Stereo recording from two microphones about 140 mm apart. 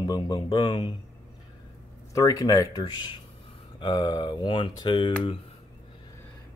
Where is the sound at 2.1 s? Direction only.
25° left (ahead or behind).